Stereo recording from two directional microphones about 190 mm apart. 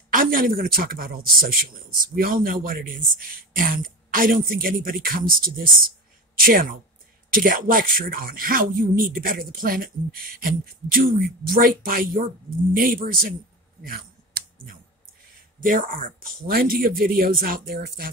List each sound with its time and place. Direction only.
0.1 s speech: 50° right (ahead or behind)
13.8 s a sound: 50° right (ahead or behind)
15.6 s speech: 45° right (ahead or behind)